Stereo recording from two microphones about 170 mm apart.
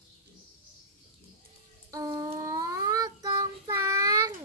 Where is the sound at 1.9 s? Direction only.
20° right (ahead or behind).